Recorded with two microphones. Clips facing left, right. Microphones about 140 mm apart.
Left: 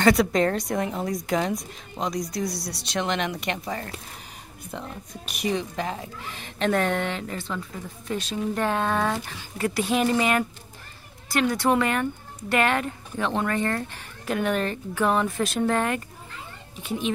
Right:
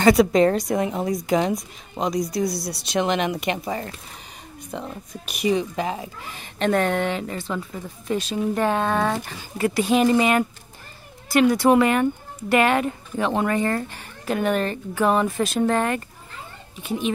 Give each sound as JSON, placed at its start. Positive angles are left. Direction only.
{"t": 0.0, "sound": "speech", "side_deg": -5}
{"t": 4.7, "sound": "a woman's voice", "side_deg": -5}